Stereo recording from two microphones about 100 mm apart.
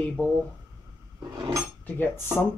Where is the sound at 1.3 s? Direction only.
40° right (ahead or behind).